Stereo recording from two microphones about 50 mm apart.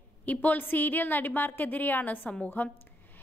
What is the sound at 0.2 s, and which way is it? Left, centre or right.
A woman's voice, left.